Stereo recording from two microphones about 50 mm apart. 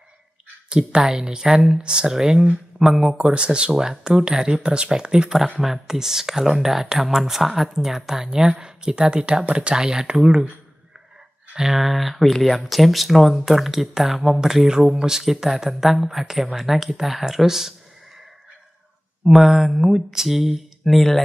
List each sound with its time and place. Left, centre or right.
0.7 s speech: centre
11.5 s speech: centre
19.2 s speech: centre